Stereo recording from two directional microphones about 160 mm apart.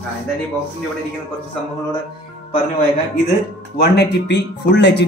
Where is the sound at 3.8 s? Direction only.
90° left.